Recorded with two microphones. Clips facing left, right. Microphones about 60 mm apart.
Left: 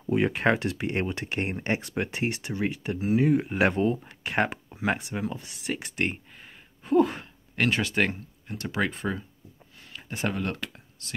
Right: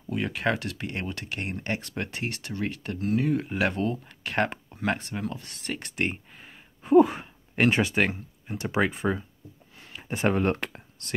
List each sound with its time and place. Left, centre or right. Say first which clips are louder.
0.0 s speech: left 4 dB; left
3.5 s speech: left 3 dB; left; by 8.0 s centre
8.0 s speech: even; centre
8.5 s speech: right 3 dB; centre
10.0 s speech: right 5 dB; right